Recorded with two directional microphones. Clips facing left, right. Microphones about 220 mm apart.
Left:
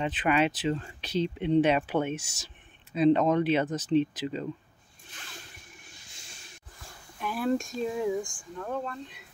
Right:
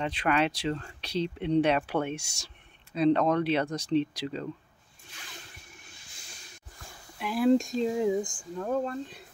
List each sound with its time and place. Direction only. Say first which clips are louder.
0.0 s speech: left 1 dB; 5° left (ahead or behind)
7.2 s speech: right 5 dB; 15° right (ahead or behind)
8.5 s speech: right 5 dB; 35° right (ahead or behind)